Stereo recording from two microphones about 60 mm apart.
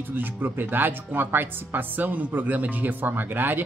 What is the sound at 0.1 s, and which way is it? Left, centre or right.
Speech, right.